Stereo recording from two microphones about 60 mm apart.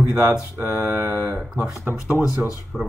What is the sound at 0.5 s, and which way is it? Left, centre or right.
Speech, right.